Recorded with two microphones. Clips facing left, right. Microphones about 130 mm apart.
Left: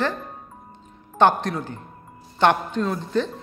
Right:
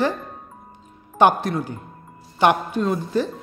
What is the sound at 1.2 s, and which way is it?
A man's voice, 10° right (ahead or behind).